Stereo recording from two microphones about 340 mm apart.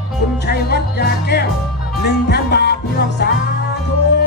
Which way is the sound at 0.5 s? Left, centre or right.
Left.